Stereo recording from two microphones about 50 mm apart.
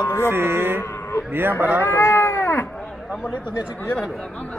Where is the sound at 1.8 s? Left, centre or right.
Left.